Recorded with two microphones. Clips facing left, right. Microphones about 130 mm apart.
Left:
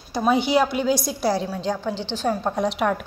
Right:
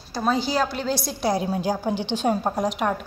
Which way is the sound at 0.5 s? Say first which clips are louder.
Left 4 dB; 15° left (ahead or behind).